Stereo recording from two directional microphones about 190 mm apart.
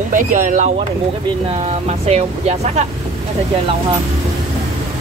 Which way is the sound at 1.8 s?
35° right (ahead or behind).